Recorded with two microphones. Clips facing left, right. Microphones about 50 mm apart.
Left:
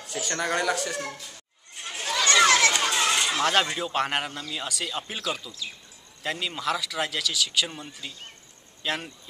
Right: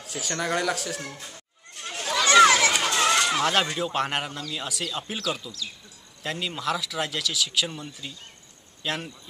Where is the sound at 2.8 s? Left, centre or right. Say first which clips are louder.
Right 2 dB; centre.